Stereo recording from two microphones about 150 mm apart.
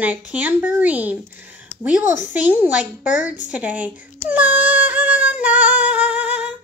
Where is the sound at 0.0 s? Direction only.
10° right (ahead or behind).